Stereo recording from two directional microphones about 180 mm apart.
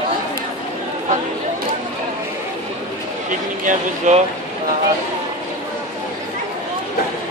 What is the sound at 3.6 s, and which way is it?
Speech, 40° right (ahead or behind).